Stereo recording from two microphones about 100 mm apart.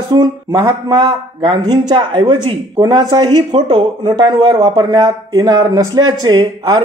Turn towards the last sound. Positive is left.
turn(degrees=-45)  # may be behind; listen again after turning